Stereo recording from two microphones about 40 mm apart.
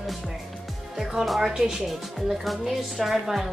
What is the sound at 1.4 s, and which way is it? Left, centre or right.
A woman's voice, centre.